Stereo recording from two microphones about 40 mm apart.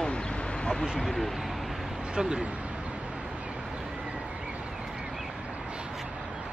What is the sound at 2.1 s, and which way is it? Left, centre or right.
Speech, right.